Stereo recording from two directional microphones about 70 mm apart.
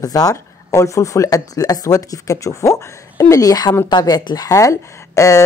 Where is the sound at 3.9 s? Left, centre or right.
Left.